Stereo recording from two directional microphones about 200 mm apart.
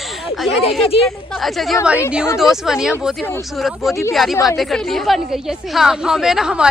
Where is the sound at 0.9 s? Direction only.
25° left (ahead or behind).